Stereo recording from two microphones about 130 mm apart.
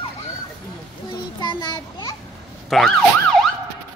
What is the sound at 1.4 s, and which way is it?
Speech, 35° left (ahead or behind).